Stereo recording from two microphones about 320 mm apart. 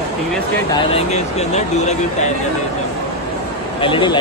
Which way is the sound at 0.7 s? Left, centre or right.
Centre.